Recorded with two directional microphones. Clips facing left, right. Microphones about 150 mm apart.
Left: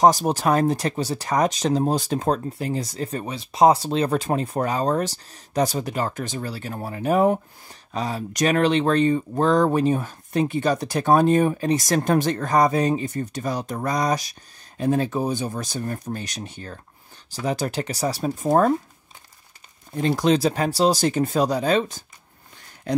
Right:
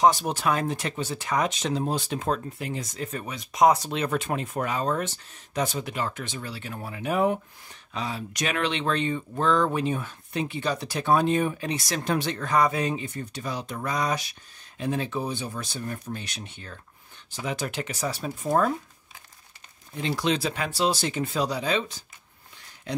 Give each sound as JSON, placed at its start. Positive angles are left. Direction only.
{"t": 0.0, "sound": "speech", "side_deg": 40}
{"t": 19.9, "sound": "speech", "side_deg": 45}